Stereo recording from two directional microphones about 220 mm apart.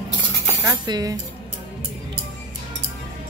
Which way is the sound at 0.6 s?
15° right (ahead or behind).